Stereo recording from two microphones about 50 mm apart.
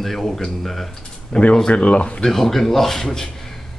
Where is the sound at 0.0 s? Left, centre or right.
Centre.